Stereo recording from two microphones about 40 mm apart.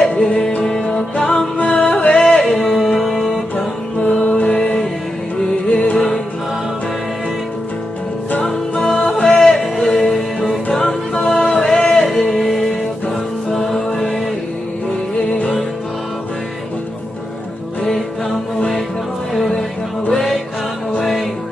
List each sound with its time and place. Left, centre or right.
0.1 s music: centre
2.2 s music: centre
4.1 s music: left
4.5 s music: centre
5.7 s music: left
5.9 s music: centre
8.8 s music: centre
10.7 s music: centre
12.1 s music: centre
19.3 s music: centre
21.0 s music: centre